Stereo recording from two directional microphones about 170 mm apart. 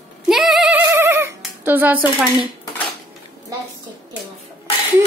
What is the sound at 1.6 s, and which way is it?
Speech, 10° right (ahead or behind).